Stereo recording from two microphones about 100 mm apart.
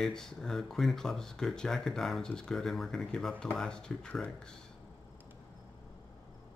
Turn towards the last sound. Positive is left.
turn(degrees=10)  # may be behind; listen again after turning